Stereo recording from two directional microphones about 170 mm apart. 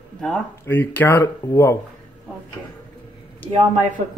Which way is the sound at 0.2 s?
10° left (ahead or behind).